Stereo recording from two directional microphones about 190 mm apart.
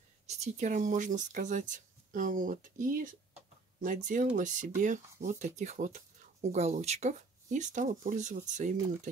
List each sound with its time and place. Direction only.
0.3 s speech: 40° right (ahead or behind)